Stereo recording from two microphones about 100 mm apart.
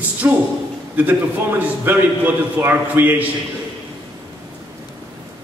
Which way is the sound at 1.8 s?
20° right (ahead or behind).